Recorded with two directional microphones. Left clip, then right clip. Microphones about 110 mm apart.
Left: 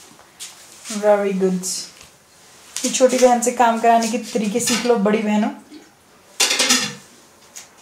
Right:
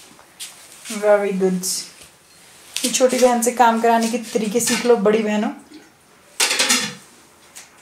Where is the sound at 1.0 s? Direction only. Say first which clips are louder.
Even; 25° right (ahead or behind).